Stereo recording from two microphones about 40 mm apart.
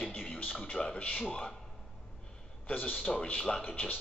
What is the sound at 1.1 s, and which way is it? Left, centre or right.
Speech, left.